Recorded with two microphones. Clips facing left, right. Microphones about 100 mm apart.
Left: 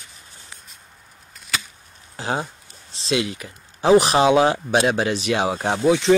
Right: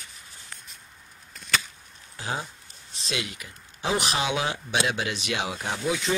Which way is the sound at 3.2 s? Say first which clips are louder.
Left 9 dB; 35° left (ahead or behind).